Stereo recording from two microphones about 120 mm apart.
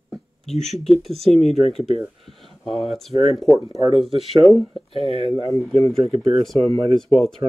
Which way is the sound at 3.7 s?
55° left (ahead or behind).